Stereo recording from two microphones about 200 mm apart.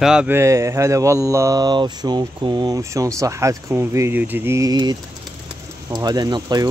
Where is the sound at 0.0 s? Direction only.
5° right (ahead or behind).